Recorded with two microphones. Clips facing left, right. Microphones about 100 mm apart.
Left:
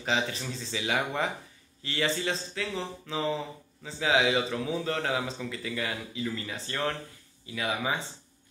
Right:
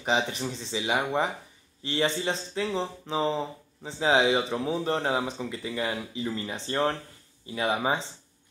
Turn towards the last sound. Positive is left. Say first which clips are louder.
# right 4 dB
turn(degrees=-30)  # may be behind; listen again after turning